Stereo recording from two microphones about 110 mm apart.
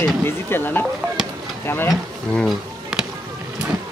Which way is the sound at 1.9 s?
Centre (ahead or behind).